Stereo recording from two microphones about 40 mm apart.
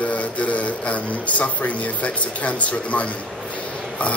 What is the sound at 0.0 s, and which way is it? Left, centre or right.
Speech, left.